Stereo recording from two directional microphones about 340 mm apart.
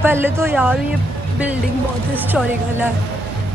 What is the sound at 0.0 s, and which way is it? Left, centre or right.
Speech, centre.